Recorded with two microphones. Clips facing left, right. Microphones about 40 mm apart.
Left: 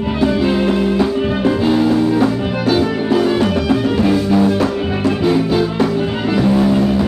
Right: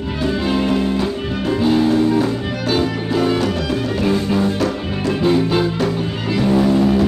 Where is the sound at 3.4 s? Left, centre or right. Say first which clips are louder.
Left 5 dB; centre.